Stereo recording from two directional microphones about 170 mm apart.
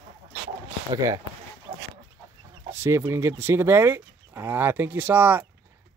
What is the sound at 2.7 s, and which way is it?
Speech, 15° right (ahead or behind).